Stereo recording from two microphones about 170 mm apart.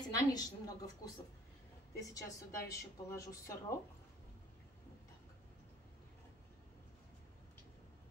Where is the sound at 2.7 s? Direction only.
20° left (ahead or behind).